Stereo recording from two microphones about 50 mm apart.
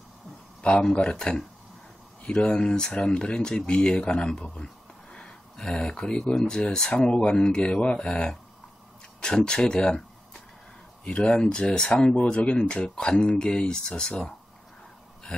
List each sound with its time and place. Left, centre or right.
0.6 s speech: centre
1.1 s speech: centre
11.1 s speech: left